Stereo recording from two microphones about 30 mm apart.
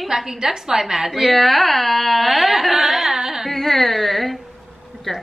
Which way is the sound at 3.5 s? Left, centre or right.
Centre.